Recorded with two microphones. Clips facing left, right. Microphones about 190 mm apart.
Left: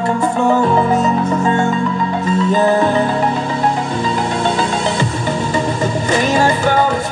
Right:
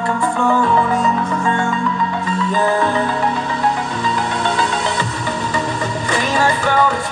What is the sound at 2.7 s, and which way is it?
Music, 30° left (ahead or behind).